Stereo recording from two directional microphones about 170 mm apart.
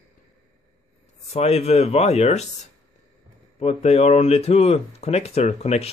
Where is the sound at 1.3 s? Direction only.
40° left (ahead or behind).